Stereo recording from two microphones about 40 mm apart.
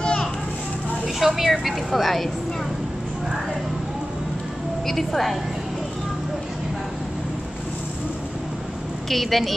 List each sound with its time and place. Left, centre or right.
0.0 s children playing: left
1.0 s a woman's voice: centre
4.8 s a woman's voice: centre
9.1 s a woman's voice: centre